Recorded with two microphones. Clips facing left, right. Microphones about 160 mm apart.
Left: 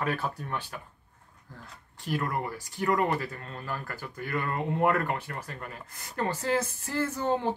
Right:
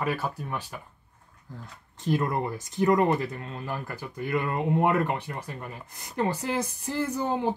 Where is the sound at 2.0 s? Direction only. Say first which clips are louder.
Right 4 dB; 20° right (ahead or behind).